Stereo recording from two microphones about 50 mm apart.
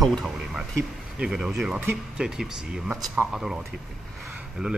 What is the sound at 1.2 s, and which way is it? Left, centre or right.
Speech, centre.